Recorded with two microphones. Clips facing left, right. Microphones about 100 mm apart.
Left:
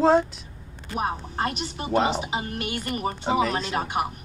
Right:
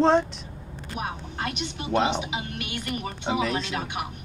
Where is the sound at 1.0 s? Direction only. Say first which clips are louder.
Left 5 dB; 40° left (ahead or behind).